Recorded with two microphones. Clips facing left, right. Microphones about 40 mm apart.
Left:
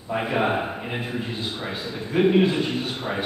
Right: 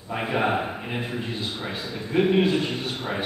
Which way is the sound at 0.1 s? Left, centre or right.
Centre.